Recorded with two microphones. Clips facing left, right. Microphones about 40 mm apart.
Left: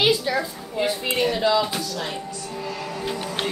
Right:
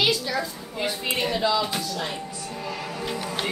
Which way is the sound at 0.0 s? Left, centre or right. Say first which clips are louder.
Left 3 dB; left.